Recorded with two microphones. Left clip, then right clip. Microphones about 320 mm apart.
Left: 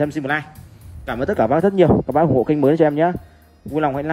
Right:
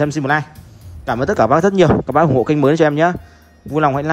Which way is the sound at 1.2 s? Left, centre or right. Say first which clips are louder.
Right 3 dB; left.